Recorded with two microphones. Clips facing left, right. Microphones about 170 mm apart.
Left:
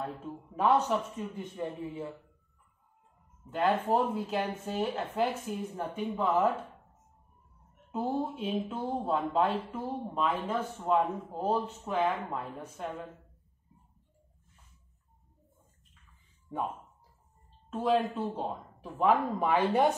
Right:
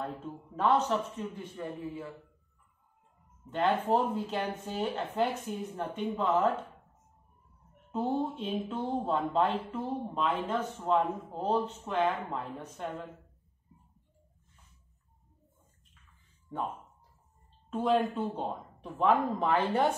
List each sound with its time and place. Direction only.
0.6 s speech: 10° left (ahead or behind)
1.6 s speech: 25° left (ahead or behind)
3.4 s speech: 5° left (ahead or behind)
7.9 s speech: 5° left (ahead or behind)
17.6 s speech: centre (ahead or behind)